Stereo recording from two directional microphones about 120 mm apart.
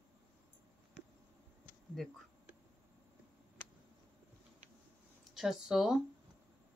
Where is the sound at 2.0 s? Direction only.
Centre (ahead or behind).